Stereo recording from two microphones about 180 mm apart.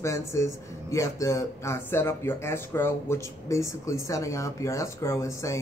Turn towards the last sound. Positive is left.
turn(degrees=15)  # may be behind; listen again after turning